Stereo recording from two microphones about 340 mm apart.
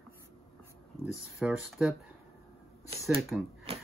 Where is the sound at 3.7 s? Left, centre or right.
Centre.